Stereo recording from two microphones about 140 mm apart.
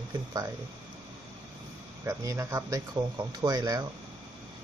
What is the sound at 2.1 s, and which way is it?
Speech, 20° right (ahead or behind).